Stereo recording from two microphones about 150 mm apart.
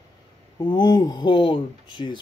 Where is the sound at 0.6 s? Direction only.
30° left (ahead or behind).